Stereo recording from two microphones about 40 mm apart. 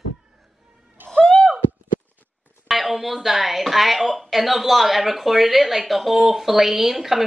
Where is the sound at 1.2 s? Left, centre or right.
Left.